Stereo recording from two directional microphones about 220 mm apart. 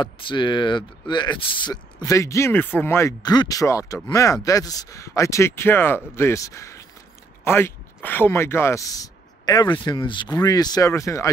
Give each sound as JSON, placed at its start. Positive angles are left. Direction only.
{"t": 0.0, "sound": "speech", "side_deg": 20}